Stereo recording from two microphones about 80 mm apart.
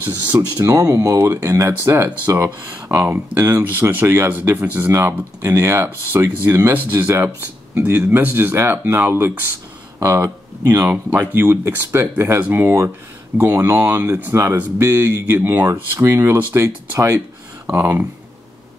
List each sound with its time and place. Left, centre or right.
0.0 s speech: right
0.6 s speech: right
1.1 s speech: right
4.9 s speech: right
7.7 s speech: right
9.9 s speech: right
11.1 s speech: right